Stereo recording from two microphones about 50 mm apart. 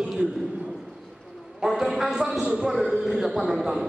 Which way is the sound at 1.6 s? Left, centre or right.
Centre.